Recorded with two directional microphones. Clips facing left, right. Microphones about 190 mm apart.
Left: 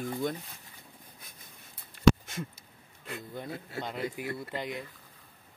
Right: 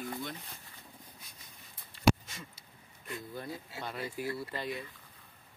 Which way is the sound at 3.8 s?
20° left (ahead or behind).